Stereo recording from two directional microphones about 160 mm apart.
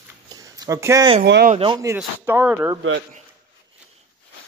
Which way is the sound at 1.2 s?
90° right.